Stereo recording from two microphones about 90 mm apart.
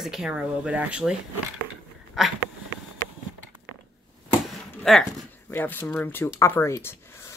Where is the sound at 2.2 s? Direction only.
Centre (ahead or behind).